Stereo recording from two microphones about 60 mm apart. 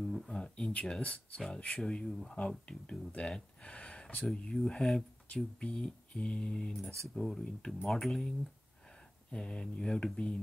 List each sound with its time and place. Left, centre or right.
0.3 s speech: centre
9.3 s speech: centre